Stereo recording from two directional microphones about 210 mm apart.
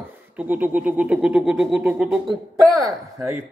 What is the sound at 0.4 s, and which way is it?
Speech, 5° right (ahead or behind).